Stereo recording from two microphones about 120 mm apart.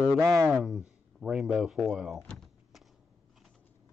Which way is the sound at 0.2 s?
25° right (ahead or behind).